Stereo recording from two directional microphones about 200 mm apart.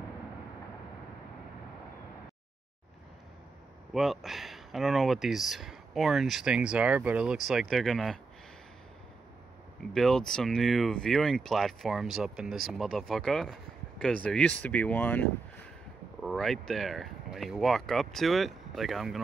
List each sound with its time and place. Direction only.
3.9 s speech: centre (ahead or behind)
9.9 s speech: centre (ahead or behind)